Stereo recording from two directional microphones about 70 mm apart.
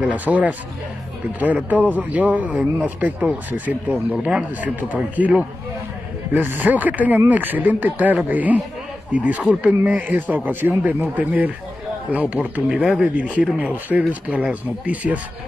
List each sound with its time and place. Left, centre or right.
0.0 s speech: right
13.0 s speech: centre